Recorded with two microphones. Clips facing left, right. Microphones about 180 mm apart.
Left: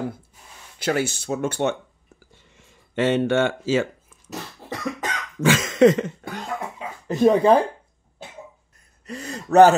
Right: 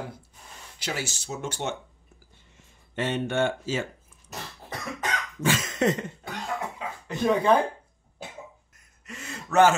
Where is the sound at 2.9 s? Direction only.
90° left.